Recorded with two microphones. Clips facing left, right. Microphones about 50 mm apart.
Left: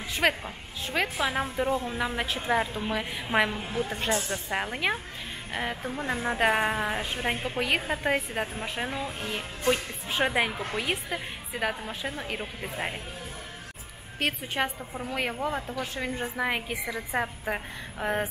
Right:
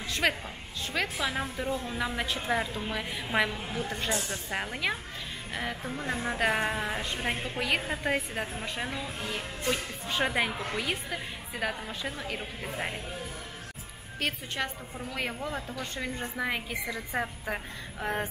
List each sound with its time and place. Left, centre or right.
0.1 s a woman's voice: centre
14.2 s a woman's voice: centre
15.7 s a woman's voice: centre